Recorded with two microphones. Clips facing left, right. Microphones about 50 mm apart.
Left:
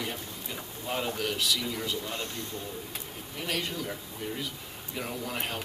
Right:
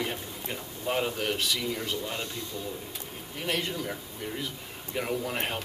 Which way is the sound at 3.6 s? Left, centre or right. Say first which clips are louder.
Right 1 dB; centre.